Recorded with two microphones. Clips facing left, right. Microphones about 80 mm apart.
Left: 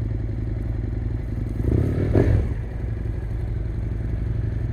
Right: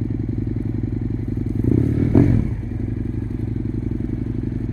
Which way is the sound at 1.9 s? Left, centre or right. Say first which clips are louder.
Right 4 dB; left.